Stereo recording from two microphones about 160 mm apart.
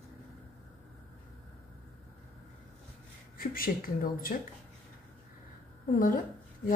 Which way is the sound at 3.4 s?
60° left (ahead or behind).